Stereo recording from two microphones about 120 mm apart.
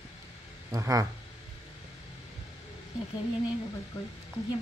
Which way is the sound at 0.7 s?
30° right (ahead or behind).